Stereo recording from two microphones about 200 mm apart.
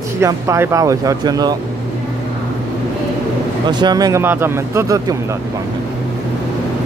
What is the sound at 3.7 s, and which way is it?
Speech, 20° right (ahead or behind).